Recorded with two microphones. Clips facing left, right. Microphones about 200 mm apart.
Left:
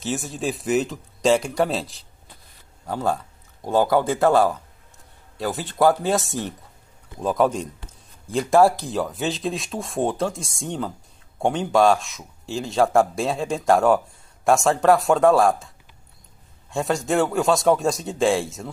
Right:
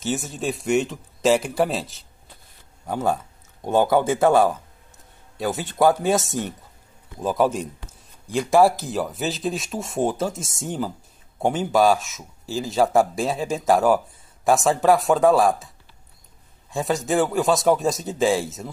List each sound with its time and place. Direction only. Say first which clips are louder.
0.0 s speech: even; centre (ahead or behind)
2.9 s a man's voice: right 1 dB; 15° right (ahead or behind)
4.0 s a man's voice: right 1 dB; 5° right (ahead or behind)
5.4 s a man's voice: even; 20° right (ahead or behind)
7.2 s speech: even; 5° right (ahead or behind)
16.7 s speech: even; centre (ahead or behind)